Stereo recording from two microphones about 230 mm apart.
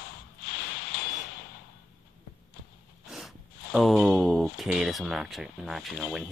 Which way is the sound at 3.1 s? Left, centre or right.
Centre.